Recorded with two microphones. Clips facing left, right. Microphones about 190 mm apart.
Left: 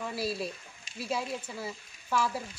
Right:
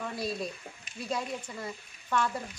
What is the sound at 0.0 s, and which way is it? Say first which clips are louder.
Speech: left 1 dB; 5° left (ahead or behind).